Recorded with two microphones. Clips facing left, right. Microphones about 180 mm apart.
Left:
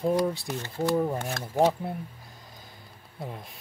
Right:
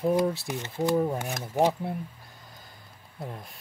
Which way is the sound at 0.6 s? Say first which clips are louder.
Even; 20° right (ahead or behind).